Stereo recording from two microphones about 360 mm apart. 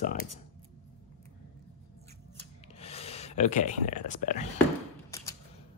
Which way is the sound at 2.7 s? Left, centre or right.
Centre.